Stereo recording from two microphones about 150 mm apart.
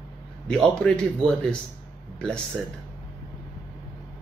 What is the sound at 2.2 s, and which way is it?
Speech, 5° left (ahead or behind).